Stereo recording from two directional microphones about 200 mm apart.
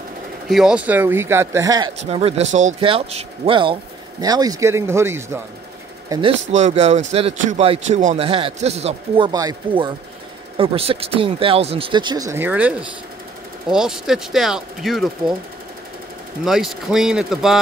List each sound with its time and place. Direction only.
0.5 s a man's voice: 5° right (ahead or behind)
2.0 s a man's voice: 30° right (ahead or behind)
6.5 s a man's voice: 35° right (ahead or behind); by 15.3 s centre (ahead or behind)
16.4 s speech: centre (ahead or behind)